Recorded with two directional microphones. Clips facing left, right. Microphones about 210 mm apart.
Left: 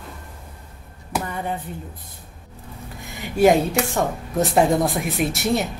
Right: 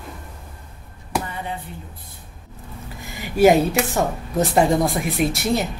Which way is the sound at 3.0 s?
Centre (ahead or behind).